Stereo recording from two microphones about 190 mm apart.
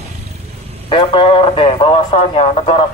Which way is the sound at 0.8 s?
25° left (ahead or behind).